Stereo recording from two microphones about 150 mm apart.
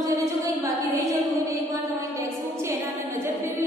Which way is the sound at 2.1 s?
15° right (ahead or behind).